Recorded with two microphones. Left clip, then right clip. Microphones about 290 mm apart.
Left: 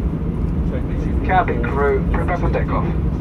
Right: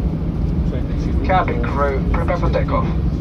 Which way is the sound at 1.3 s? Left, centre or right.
Centre.